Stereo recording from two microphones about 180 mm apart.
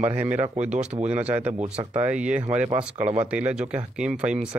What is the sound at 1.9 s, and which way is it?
Speech, 5° right (ahead or behind).